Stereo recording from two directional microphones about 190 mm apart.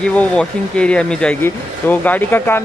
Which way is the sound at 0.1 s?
5° left (ahead or behind).